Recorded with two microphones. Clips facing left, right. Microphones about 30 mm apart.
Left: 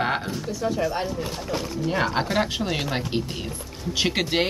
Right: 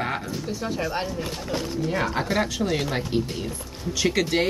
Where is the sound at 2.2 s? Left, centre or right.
Left.